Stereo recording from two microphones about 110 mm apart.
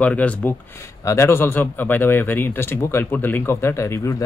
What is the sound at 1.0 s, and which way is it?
Speech, 25° left (ahead or behind).